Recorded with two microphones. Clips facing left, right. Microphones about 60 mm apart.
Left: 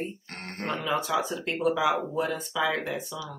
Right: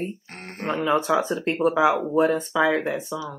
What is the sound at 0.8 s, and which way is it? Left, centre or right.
Speech, right.